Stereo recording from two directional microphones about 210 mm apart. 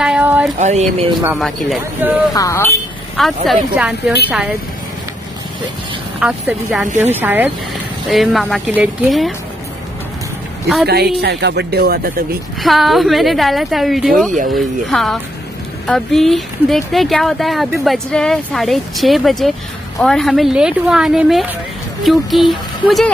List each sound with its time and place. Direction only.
0.0 s a sound: 5° right (ahead or behind)
0.6 s speech: 35° right (ahead or behind)
1.2 s speech: centre (ahead or behind)
2.3 s speech: 15° left (ahead or behind)
3.2 s speech: centre (ahead or behind)
6.1 s speech: 5° right (ahead or behind)
10.9 s speech: 50° right (ahead or behind)
12.6 s speech: centre (ahead or behind)